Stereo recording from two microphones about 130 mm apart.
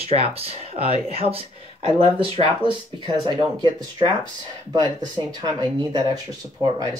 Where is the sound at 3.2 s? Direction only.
35° right (ahead or behind).